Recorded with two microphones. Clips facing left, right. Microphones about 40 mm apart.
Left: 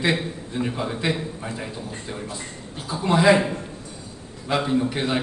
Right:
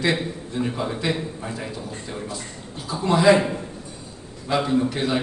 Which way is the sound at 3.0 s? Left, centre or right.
Centre.